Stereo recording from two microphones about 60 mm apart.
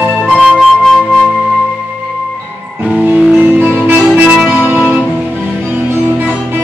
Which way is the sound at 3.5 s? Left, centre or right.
Right.